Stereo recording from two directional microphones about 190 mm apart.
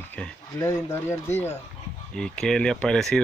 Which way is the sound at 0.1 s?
10° left (ahead or behind).